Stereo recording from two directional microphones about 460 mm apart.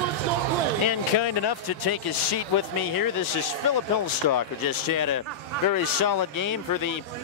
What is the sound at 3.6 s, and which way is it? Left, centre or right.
Speech, left.